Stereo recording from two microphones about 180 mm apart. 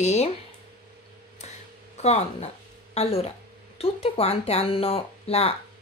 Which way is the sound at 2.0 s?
35° left (ahead or behind).